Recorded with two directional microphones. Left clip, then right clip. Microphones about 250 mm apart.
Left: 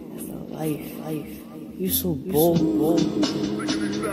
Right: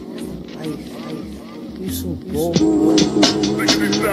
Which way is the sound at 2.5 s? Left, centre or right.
Right.